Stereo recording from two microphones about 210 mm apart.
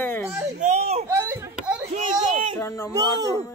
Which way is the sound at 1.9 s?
35° right (ahead or behind).